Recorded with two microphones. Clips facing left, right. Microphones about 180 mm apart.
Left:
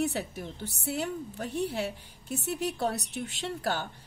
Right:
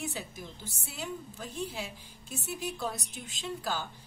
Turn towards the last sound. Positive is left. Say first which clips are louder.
# left 3 dB
turn(degrees=65)  # may be behind; listen again after turning